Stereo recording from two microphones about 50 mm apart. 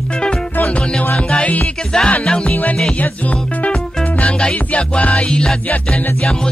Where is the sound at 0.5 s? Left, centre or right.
Left.